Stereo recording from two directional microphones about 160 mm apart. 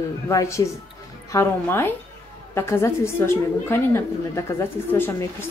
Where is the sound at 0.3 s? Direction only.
20° left (ahead or behind).